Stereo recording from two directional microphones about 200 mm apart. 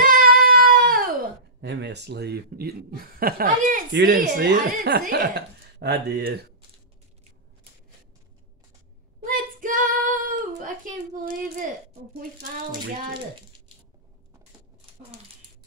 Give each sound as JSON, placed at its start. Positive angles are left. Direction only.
{"t": 0.0, "sound": "cat", "side_deg": -45}
{"t": 1.6, "sound": "speech", "side_deg": -60}
{"t": 4.3, "sound": "speech", "side_deg": -50}
{"t": 9.2, "sound": "child singing", "side_deg": -40}